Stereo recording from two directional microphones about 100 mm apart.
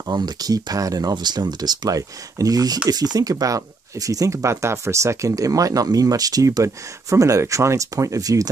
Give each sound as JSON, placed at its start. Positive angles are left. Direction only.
{"t": 0.0, "sound": "speech", "side_deg": -40}